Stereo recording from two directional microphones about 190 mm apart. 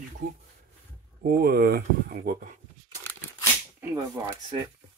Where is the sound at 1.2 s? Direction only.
55° right (ahead or behind).